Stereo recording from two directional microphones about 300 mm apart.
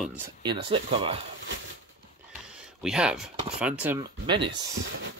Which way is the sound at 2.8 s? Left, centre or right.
Centre.